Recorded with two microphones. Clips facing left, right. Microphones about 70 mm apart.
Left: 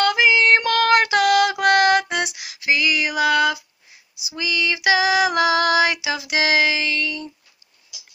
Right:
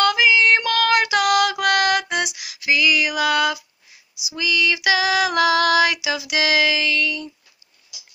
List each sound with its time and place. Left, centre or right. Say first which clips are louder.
0.0 s female singing: even; left